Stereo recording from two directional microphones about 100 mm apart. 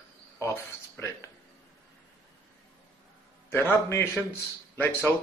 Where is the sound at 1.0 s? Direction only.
25° left (ahead or behind).